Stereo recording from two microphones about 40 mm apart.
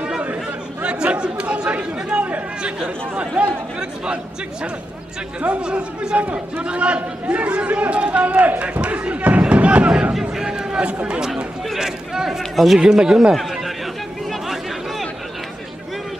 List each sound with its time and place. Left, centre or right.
0.8 s chatter: right
3.2 s a man's voice: right
5.4 s a man's voice: right
10.1 s speech: centre
10.7 s chatter: right
11.1 s a man's voice: centre
12.7 s speech: centre